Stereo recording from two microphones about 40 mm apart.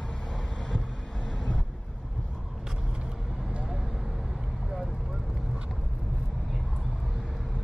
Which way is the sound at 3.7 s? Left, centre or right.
Centre.